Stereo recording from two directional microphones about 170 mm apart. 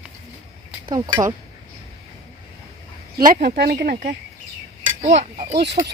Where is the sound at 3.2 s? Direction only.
60° right (ahead or behind).